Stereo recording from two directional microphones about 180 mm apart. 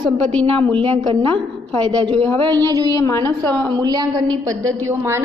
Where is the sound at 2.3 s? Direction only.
25° right (ahead or behind).